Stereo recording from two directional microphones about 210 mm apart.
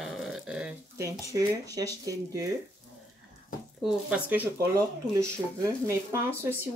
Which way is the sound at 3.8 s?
5° right (ahead or behind).